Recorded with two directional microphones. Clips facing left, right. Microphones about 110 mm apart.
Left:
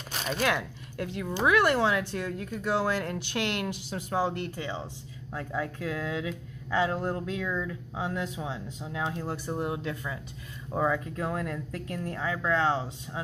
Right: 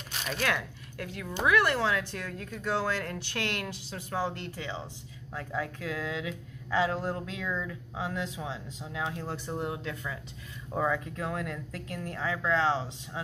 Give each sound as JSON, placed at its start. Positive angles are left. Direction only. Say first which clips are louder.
{"t": 0.3, "sound": "speech", "louder": "left 3 dB", "side_deg": 20}